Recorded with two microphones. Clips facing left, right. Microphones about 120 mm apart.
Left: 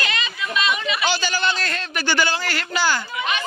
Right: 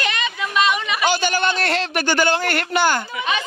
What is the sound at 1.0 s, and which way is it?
A man's voice, 55° right (ahead or behind).